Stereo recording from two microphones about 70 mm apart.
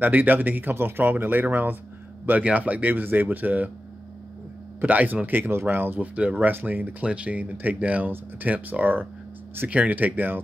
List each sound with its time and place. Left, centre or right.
0.0 s speech: right
4.7 s speech: right